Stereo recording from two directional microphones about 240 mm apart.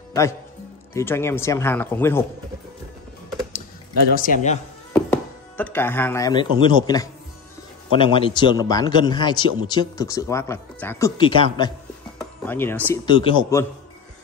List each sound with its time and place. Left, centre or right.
0.9 s speech: centre
4.1 s a man's voice: left
4.9 s a man's voice: centre
12.2 s speech: centre